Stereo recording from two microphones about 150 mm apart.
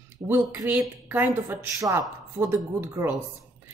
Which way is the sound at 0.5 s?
10° right (ahead or behind).